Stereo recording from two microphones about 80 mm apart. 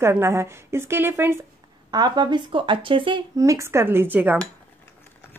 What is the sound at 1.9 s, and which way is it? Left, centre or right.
Speech, right.